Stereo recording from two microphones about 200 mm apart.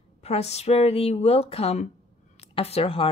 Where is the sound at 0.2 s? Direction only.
30° left (ahead or behind).